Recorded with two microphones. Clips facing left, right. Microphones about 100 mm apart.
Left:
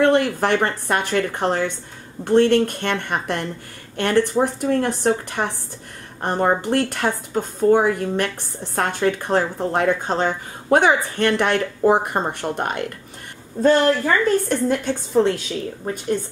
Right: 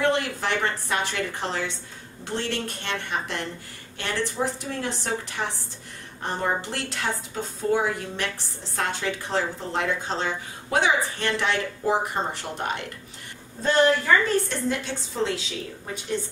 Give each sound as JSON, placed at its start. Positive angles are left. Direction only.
{"t": 0.0, "sound": "a woman's voice", "side_deg": 55}
{"t": 14.5, "sound": "a woman's voice", "side_deg": 50}